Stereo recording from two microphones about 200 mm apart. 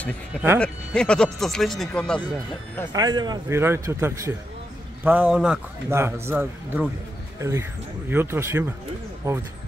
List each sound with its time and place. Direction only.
0.6 s speech: 5° left (ahead or behind)
2.9 s a man's voice: 20° right (ahead or behind)